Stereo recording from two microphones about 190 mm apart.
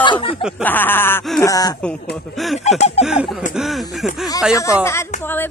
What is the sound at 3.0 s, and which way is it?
Speech, 30° left (ahead or behind).